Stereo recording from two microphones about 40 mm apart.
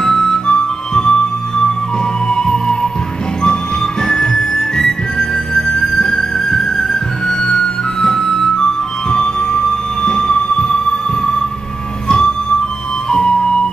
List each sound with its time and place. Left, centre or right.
0.0 s music: centre
2.2 s music: centre
13.1 s music: centre